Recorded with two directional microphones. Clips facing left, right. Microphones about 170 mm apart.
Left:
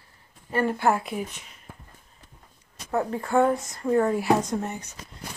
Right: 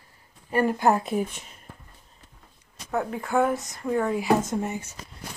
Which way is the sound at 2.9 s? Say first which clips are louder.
Left 2 dB; centre (ahead or behind).